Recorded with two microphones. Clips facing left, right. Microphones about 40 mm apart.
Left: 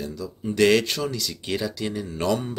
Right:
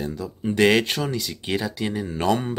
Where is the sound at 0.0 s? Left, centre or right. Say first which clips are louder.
Right 3 dB; right.